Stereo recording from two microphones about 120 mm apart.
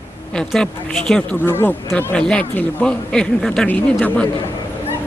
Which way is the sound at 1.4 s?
20° left (ahead or behind).